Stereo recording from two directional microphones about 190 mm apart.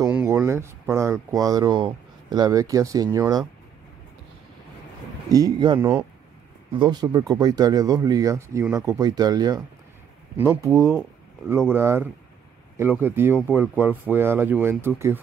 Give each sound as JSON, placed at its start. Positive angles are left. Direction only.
{"t": 0.1, "sound": "speech", "side_deg": -10}
{"t": 5.3, "sound": "speech", "side_deg": -20}
{"t": 10.8, "sound": "speech", "side_deg": 0}